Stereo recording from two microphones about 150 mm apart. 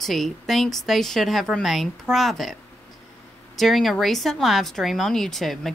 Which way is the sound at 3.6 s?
Centre (ahead or behind).